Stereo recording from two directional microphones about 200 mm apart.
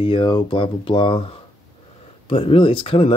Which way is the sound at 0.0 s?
25° left (ahead or behind).